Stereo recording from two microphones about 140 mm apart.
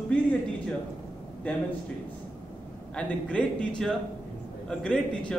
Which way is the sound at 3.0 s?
10° left (ahead or behind).